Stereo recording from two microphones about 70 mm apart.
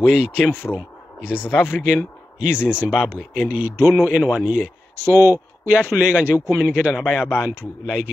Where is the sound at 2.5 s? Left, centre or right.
Left.